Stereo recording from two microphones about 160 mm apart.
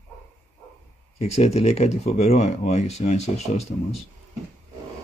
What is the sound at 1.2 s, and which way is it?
Speech, 40° left (ahead or behind).